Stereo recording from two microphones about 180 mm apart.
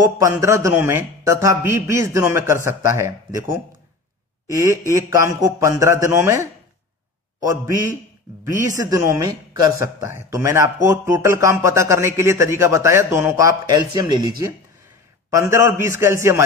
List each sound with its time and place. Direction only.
0.0 s speech: 15° right (ahead or behind)
4.5 s speech: 20° right (ahead or behind)